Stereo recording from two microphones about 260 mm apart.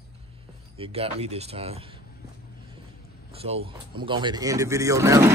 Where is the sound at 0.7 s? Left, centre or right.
Right.